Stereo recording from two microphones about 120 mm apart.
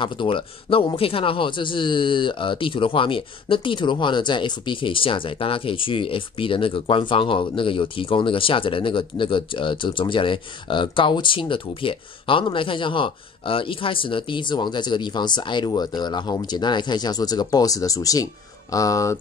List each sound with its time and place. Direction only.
0.0 s speech: 45° left (ahead or behind); by 19.1 s 25° left (ahead or behind)